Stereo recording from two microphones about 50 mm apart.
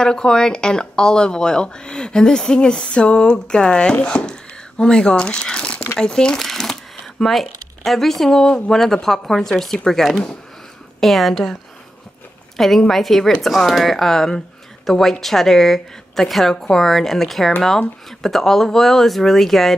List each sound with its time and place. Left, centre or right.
0.0 s speech: centre
4.0 s a sound: centre
5.9 s speech: centre
12.5 s speech: centre